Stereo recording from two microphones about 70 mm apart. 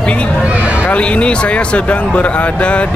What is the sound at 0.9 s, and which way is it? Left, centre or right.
Speech, centre.